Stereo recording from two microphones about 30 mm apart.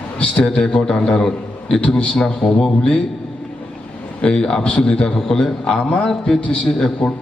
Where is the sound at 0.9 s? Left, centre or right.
Left.